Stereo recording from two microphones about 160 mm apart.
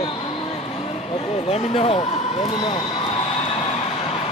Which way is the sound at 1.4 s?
40° left (ahead or behind).